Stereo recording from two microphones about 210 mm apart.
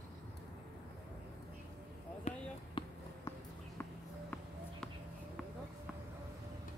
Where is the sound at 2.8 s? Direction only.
25° left (ahead or behind).